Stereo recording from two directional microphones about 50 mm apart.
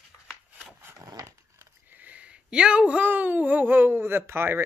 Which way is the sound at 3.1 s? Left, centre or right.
Right.